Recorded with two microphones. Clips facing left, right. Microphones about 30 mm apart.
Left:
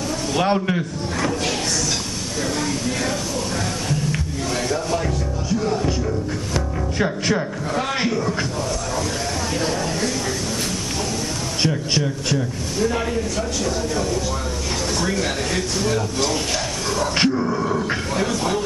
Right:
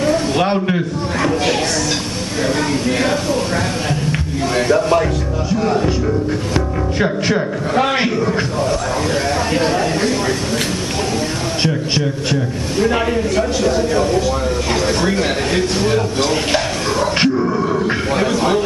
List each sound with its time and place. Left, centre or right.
0.0 s a sound: right
0.4 s a man's voice: centre
4.6 s speech: right
6.5 s speech: right
7.7 s speech: right
9.5 s speech: right
11.6 s speech: right
12.7 s speech: right
17.2 s grunt: centre
18.1 s a man's voice: right